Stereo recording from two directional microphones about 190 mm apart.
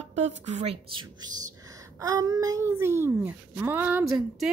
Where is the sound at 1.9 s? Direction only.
20° right (ahead or behind).